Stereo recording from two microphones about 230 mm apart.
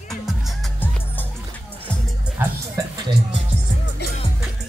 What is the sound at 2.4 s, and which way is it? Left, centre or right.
Music, centre.